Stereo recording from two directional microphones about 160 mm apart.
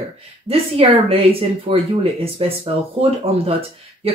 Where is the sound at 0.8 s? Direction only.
40° right (ahead or behind).